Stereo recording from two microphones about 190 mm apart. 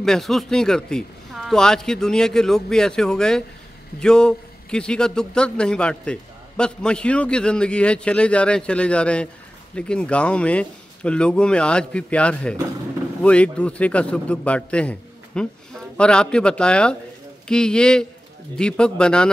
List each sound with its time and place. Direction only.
0.0 s a man's voice: centre (ahead or behind)